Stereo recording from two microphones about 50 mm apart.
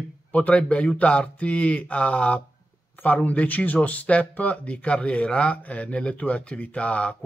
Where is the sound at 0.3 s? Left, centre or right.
Left.